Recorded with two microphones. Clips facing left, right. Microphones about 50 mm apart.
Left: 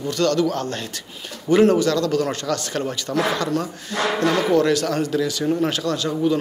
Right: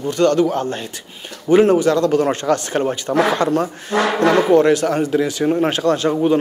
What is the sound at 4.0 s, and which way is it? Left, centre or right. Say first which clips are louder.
Speech: right 5 dB; right.